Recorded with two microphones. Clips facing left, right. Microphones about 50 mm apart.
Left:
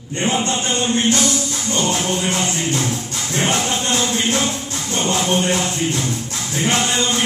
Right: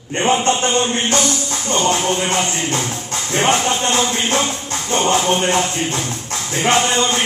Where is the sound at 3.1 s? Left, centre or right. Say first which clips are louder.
Right 8 dB; right.